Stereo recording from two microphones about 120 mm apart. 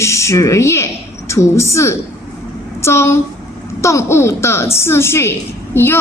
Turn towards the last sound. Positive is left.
turn(degrees=20)  # may be behind; listen again after turning